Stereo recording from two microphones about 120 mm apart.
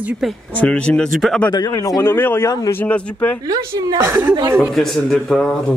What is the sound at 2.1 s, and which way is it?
Speech, 20° left (ahead or behind).